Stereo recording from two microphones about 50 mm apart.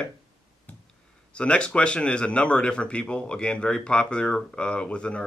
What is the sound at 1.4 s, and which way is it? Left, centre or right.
A man's voice, left.